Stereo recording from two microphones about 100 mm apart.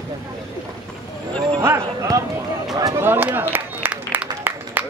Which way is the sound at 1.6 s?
25° right (ahead or behind).